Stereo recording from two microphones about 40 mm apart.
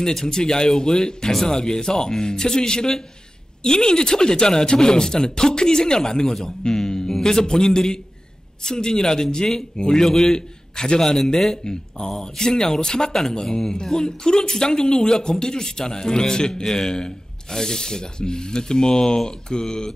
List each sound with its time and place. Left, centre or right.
0.0 s a man's voice: centre